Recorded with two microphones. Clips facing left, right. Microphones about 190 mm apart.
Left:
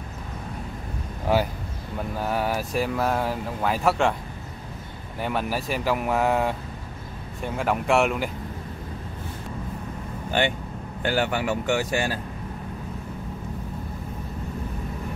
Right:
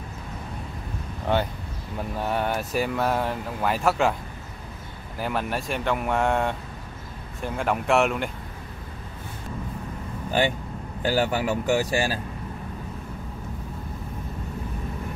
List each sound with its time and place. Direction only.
1.3 s speech: 5° left (ahead or behind)
5.2 s speech: centre (ahead or behind)
11.1 s speech: 35° right (ahead or behind)